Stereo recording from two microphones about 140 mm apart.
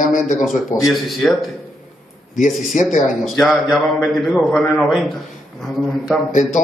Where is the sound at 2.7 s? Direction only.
60° left (ahead or behind).